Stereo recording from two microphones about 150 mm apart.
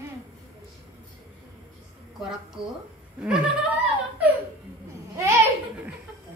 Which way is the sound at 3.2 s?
5° right (ahead or behind).